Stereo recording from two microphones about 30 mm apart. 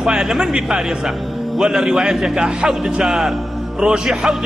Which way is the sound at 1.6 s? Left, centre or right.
Right.